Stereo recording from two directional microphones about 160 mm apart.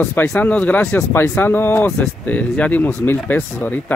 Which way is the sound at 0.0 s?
10° left (ahead or behind).